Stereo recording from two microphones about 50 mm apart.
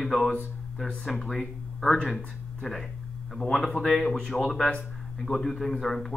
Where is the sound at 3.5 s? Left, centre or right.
Centre.